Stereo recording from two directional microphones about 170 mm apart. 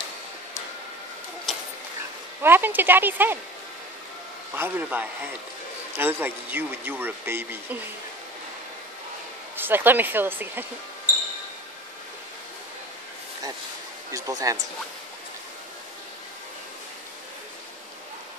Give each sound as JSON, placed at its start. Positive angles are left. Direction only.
{"t": 2.4, "sound": "speech", "side_deg": -10}
{"t": 4.6, "sound": "speech", "side_deg": -10}
{"t": 9.6, "sound": "speech", "side_deg": -10}
{"t": 14.1, "sound": "speech", "side_deg": -20}